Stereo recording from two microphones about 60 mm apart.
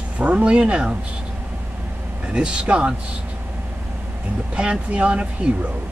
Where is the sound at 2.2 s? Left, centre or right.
Centre.